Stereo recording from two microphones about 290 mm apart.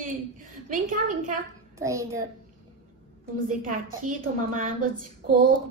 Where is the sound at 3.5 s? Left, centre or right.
Right.